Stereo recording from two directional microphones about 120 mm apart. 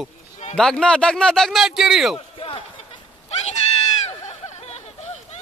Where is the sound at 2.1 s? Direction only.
50° left (ahead or behind).